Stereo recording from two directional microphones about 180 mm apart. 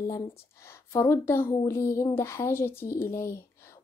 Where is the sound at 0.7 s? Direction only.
15° left (ahead or behind).